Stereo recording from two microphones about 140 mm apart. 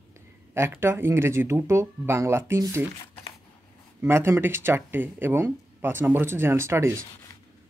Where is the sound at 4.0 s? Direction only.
20° right (ahead or behind).